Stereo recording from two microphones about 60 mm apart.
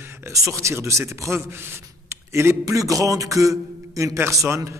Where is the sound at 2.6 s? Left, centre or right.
Right.